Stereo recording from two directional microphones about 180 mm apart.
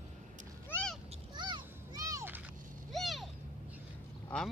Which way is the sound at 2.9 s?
Centre (ahead or behind).